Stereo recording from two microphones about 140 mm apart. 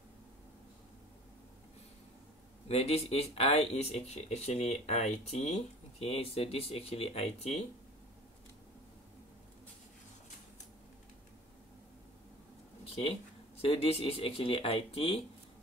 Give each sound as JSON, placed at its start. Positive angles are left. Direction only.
{"t": 2.7, "sound": "speech", "side_deg": 45}
{"t": 12.8, "sound": "a sound", "side_deg": 45}
{"t": 13.6, "sound": "speech", "side_deg": 45}